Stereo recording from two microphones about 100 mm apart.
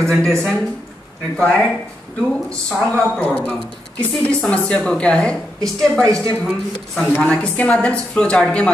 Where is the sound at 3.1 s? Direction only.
10° left (ahead or behind).